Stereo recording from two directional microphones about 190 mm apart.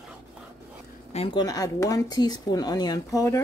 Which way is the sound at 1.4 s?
20° left (ahead or behind).